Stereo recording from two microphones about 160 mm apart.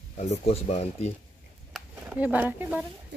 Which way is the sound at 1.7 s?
5° right (ahead or behind).